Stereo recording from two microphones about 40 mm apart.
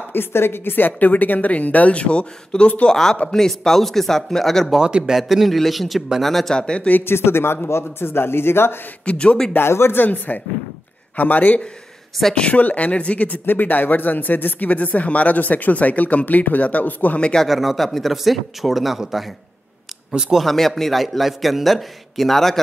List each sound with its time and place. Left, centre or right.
0.1 s a woman's voice: left
2.9 s speech: centre
4.8 s a man's voice: right
5.1 s a man's voice: centre
6.5 s speech: left
7.1 s speech: left
9.0 s speech: left
9.6 s speech: left
10.0 s a woman's voice: left
12.2 s a man's voice: centre
12.5 s speech: left
13.5 s a woman's voice: left
17.5 s a man's voice: centre
20.4 s a man's voice: centre